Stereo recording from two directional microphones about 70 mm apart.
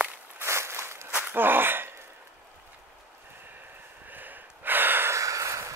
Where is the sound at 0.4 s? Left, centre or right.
Right.